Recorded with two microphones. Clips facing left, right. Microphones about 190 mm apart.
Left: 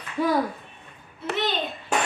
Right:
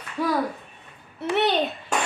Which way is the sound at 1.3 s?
65° right (ahead or behind).